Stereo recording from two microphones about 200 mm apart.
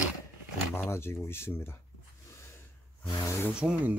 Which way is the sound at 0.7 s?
10° left (ahead or behind).